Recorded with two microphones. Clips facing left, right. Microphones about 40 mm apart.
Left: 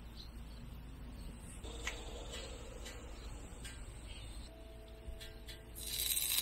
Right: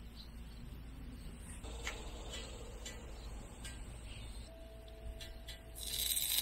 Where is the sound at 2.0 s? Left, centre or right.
Left.